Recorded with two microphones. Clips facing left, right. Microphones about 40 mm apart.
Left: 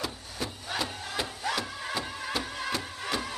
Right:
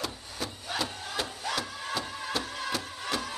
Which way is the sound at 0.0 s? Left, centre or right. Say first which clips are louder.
Left 1 dB; centre.